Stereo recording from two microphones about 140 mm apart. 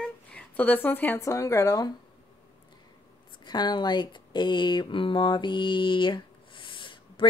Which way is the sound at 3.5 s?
30° left (ahead or behind).